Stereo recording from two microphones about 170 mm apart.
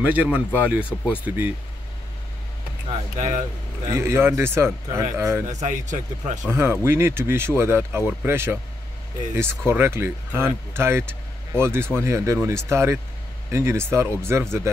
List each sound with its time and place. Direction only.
0.0 s speech: 10° right (ahead or behind)
3.2 s speech: 45° right (ahead or behind)
3.9 s speech: 15° right (ahead or behind)
5.5 s speech: 45° right (ahead or behind)
6.5 s speech: 15° right (ahead or behind)
9.7 s speech: 15° right (ahead or behind)